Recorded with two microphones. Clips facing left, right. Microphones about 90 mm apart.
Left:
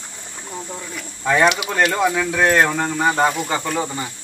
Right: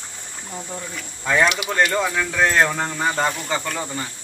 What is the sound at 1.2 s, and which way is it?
Speech, 5° left (ahead or behind).